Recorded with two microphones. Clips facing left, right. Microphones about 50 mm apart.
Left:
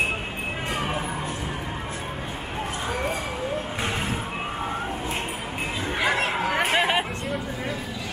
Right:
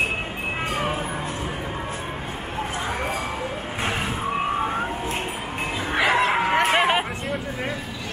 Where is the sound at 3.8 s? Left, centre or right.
Right.